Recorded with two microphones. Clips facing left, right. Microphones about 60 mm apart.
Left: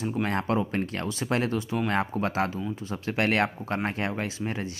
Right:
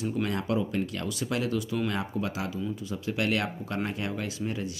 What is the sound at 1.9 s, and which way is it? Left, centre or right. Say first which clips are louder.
Speech: left 4 dB; left.